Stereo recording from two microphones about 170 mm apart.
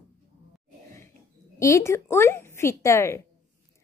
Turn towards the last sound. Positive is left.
turn(degrees=15)  # may be behind; listen again after turning